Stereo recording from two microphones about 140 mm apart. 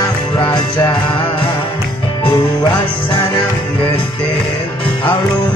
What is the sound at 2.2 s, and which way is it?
Music, 35° left (ahead or behind).